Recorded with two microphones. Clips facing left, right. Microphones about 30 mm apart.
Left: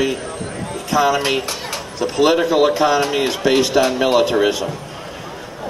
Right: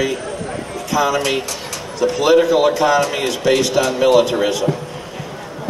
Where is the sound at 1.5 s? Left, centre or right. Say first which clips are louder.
Left 1 dB; left.